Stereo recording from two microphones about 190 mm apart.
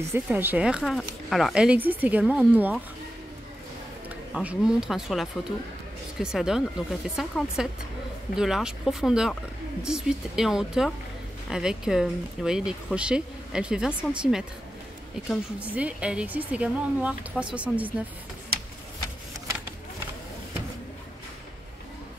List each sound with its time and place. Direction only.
0.1 s a woman's voice: 10° right (ahead or behind)
4.3 s a woman's voice: 5° right (ahead or behind)